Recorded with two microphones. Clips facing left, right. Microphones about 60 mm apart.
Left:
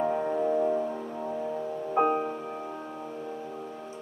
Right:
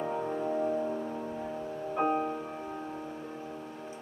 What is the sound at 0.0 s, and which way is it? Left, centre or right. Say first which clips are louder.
Music: left 5 dB; left.